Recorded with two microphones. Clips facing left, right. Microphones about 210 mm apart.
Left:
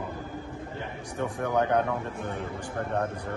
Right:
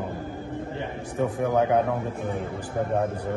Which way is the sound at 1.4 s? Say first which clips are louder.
Right 3 dB; 5° right (ahead or behind).